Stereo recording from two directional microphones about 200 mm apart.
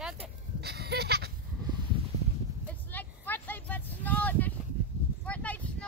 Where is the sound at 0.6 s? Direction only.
55° right (ahead or behind).